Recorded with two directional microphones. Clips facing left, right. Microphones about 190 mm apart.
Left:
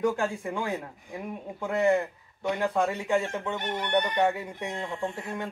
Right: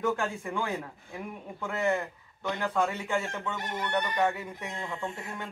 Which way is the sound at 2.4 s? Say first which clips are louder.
Left 3 dB; 15° left (ahead or behind).